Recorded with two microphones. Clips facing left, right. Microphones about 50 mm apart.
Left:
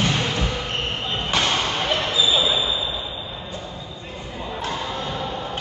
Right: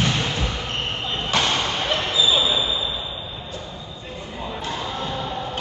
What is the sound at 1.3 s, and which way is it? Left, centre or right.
Basketball bounce, centre.